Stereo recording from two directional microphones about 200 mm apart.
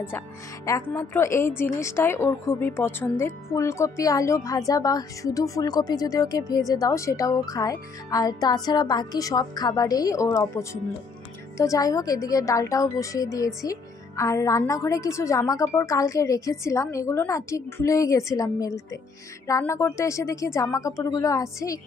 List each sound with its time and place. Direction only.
0.7 s a woman's voice: 15° left (ahead or behind)